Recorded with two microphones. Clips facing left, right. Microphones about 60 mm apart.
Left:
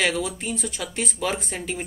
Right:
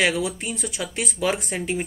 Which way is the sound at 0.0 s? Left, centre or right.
Centre.